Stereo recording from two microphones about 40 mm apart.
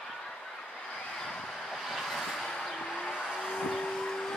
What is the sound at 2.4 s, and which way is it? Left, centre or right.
Vehicle, centre.